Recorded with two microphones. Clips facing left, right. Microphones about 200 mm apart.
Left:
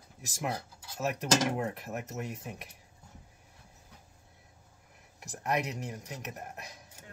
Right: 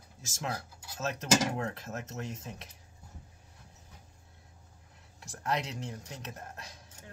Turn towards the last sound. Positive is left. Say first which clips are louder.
# left 2 dB
turn(degrees=15)  # may be behind; listen again after turning